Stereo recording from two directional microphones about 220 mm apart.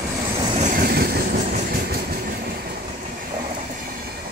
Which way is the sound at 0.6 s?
40° right (ahead or behind).